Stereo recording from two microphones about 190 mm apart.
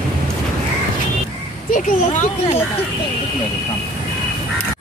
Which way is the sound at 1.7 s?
40° left (ahead or behind).